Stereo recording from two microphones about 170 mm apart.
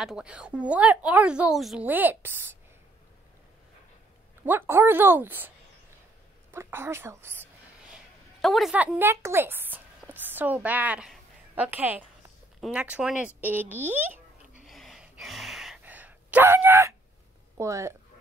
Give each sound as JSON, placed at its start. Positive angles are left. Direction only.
{"t": 0.0, "sound": "a woman's voice", "side_deg": -5}
{"t": 4.5, "sound": "a woman's voice", "side_deg": -15}
{"t": 6.5, "sound": "a woman's voice", "side_deg": -15}
{"t": 7.9, "sound": "a sound", "side_deg": 0}
{"t": 12.5, "sound": "a woman's voice", "side_deg": -5}
{"t": 14.7, "sound": "gasp", "side_deg": 0}
{"t": 17.6, "sound": "a woman's voice", "side_deg": -15}